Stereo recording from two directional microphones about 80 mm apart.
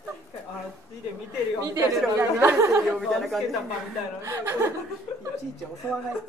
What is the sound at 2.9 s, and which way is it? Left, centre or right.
Speech, centre.